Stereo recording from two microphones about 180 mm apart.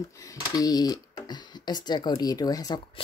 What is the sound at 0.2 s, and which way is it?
Speech, 20° left (ahead or behind).